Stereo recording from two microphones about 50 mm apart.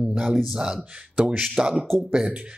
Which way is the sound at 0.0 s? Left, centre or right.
Centre.